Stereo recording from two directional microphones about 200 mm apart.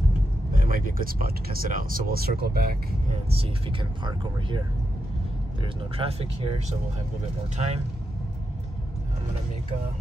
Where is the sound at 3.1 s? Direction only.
30° right (ahead or behind).